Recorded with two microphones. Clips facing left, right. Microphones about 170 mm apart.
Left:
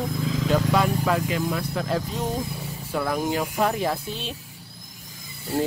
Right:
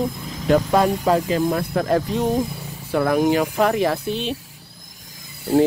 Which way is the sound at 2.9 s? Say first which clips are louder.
Right 7 dB; 65° right (ahead or behind).